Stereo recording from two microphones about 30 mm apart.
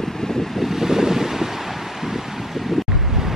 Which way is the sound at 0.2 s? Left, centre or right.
Centre.